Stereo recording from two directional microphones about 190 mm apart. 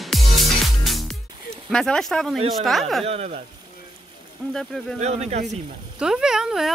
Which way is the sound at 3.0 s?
35° right (ahead or behind).